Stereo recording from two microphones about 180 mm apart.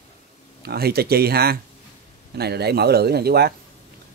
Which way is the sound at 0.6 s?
60° right (ahead or behind).